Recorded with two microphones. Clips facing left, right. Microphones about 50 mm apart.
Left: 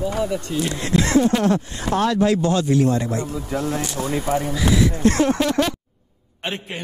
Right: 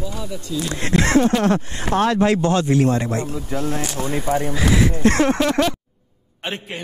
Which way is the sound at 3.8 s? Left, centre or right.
Right.